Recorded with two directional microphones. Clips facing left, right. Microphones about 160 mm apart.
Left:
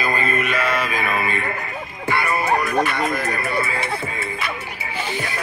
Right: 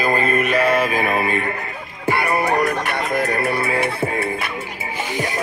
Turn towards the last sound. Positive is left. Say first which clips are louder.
# right 5 dB
turn(degrees=-55)  # may be behind; listen again after turning